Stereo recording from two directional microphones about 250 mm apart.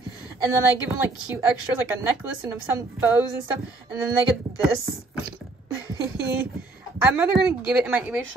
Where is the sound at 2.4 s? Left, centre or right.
Centre.